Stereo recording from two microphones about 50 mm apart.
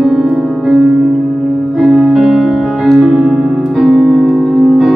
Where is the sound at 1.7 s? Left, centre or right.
Centre.